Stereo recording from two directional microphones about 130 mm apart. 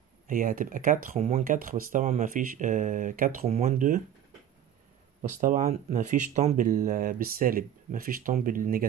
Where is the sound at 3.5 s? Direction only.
65° right (ahead or behind).